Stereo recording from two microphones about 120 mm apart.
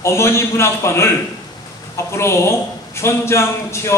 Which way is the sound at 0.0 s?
20° left (ahead or behind).